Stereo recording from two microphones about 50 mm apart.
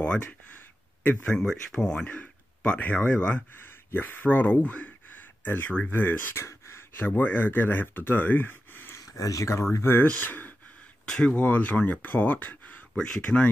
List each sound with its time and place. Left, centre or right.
0.0 s speech: left
1.4 s speech: centre
1.8 s speech: centre
3.5 s speech: left
6.3 s a sound: left
7.0 s speech: left
8.9 s speech: left
10.2 s speech: left
11.1 s speech: centre
11.3 s speech: left
12.9 s speech: centre